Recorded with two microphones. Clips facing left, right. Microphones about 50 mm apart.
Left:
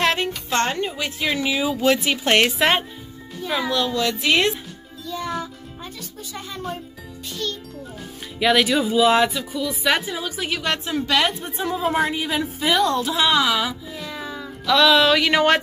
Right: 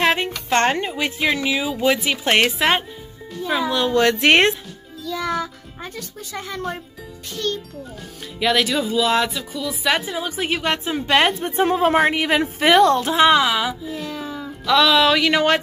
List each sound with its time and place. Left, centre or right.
0.0 s music: centre
0.5 s speech: right
1.2 s a woman's voice: centre
3.4 s music: centre
3.8 s speech: right
5.1 s music: right
5.9 s speech: right
7.3 s a woman's voice: right
8.4 s a woman's voice: centre
11.1 s a woman's voice: right
13.3 s music: centre
14.7 s a woman's voice: centre